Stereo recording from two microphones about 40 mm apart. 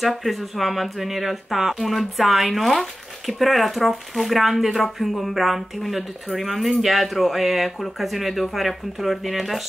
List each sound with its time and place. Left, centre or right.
0.2 s speech: centre